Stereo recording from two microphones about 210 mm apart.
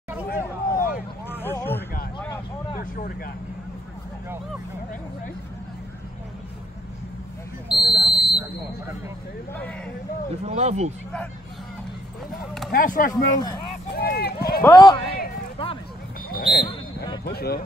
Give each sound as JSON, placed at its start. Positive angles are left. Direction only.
{"t": 0.3, "sound": "hubbub", "side_deg": 45}
{"t": 1.4, "sound": "vehicle", "side_deg": 10}
{"t": 2.7, "sound": "a sound", "side_deg": 40}
{"t": 7.8, "sound": "speech", "side_deg": 50}
{"t": 10.4, "sound": "speech", "side_deg": -30}
{"t": 12.7, "sound": "speech", "side_deg": 40}
{"t": 13.1, "sound": "speech", "side_deg": 15}
{"t": 13.9, "sound": "a sound", "side_deg": 45}
{"t": 14.6, "sound": "speech", "side_deg": 20}
{"t": 16.3, "sound": "basketball bounce", "side_deg": 45}
{"t": 17.2, "sound": "speech", "side_deg": 50}